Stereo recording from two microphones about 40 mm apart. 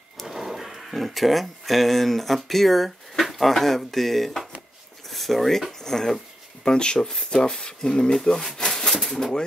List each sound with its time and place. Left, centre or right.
0.2 s speech: centre
6.6 s speech: left
8.5 s a sound: centre
9.0 s pigeon: centre